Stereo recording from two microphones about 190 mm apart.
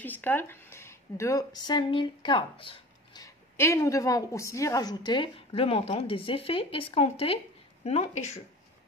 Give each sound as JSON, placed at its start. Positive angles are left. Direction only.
{"t": 0.0, "sound": "speech", "side_deg": 10}